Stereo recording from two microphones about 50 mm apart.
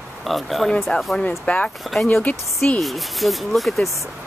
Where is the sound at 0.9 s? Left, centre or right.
Left.